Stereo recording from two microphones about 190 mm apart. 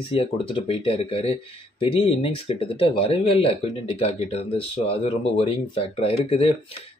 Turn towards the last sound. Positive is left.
turn(degrees=30)  # may be behind; listen again after turning